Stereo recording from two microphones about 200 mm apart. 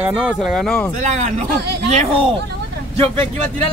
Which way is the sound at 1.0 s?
35° right (ahead or behind).